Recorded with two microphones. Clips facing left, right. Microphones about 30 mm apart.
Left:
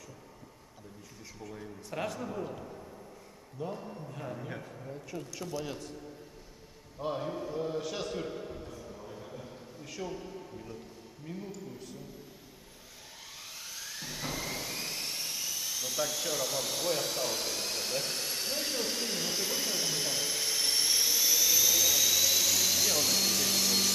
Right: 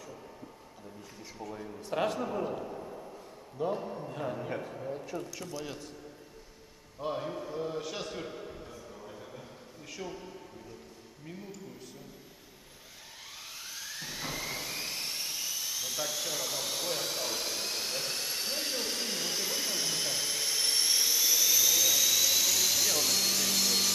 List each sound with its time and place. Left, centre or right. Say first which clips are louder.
2.0 s a man's voice: right 4 dB; right
4.1 s a man's voice: right 5 dB; right
5.3 s speech: left 2 dB; centre
7.0 s a sound: even; centre
11.2 s a man's voice: left 3 dB; centre
13.7 s jet engine: right 1 dB; centre